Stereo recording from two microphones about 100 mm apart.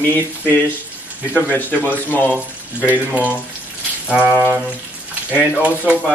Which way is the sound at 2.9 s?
15° right (ahead or behind).